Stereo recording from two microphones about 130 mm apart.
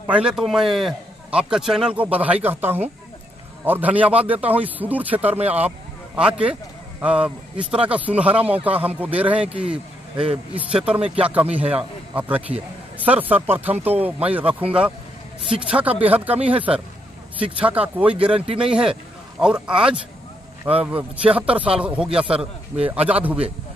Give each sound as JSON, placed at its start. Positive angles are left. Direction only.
{"t": 0.1, "sound": "a man's voice", "side_deg": -5}
{"t": 18.3, "sound": "speech", "side_deg": -45}
{"t": 18.6, "sound": "a man's voice", "side_deg": -5}